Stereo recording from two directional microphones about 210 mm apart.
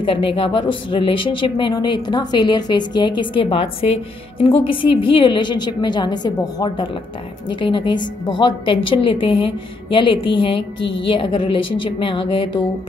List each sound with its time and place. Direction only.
0.0 s speech: 25° left (ahead or behind)